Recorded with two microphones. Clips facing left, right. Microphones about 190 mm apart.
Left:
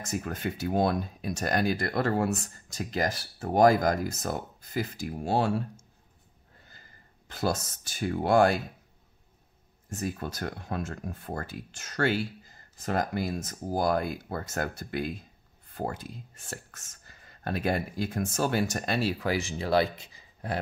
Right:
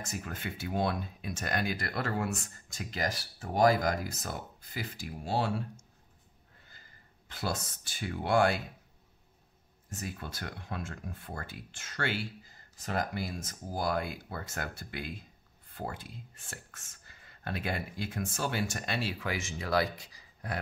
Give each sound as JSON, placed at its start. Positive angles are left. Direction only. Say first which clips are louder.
{"t": 0.1, "sound": "speech", "louder": "left 10 dB", "side_deg": 45}
{"t": 7.2, "sound": "speech", "louder": "left 6 dB", "side_deg": 45}
{"t": 9.9, "sound": "speech", "louder": "left 7 dB", "side_deg": 45}